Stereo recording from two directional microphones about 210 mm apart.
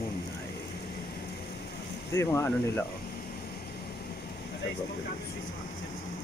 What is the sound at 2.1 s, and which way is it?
Speech, 10° left (ahead or behind).